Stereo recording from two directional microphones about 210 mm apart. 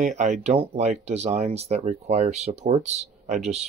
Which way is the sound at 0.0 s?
35° right (ahead or behind).